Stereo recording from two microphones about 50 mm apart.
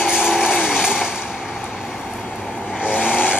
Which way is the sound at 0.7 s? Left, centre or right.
Centre.